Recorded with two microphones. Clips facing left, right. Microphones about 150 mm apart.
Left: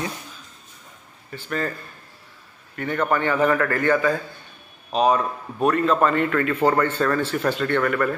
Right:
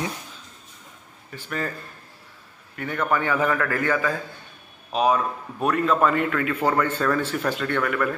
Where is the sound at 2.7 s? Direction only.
5° right (ahead or behind).